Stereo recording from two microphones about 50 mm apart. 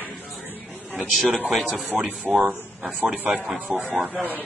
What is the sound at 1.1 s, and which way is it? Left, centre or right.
Speech, centre.